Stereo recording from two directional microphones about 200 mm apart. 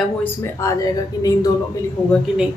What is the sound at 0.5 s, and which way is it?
Speech, 15° left (ahead or behind).